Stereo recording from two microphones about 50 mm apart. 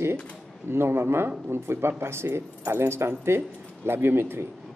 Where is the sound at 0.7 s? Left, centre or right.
Right.